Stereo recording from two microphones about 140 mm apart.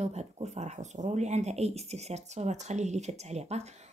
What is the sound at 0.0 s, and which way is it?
Speech, 50° right (ahead or behind).